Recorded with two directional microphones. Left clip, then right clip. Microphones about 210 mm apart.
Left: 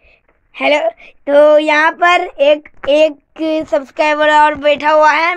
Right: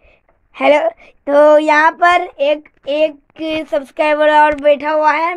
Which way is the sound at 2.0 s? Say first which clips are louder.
Left 1 dB; 25° left (ahead or behind).